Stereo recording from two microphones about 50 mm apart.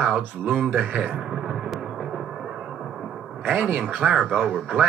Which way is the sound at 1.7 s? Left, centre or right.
Centre.